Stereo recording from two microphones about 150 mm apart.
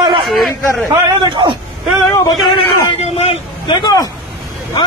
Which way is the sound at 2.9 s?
45° left (ahead or behind).